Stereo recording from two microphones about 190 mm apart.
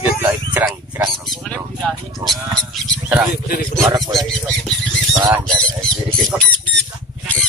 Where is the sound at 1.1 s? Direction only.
Centre (ahead or behind).